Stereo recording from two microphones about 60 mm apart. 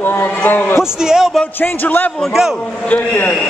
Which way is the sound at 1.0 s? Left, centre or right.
Centre.